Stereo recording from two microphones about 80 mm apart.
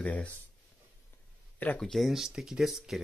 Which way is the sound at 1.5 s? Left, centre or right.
Centre.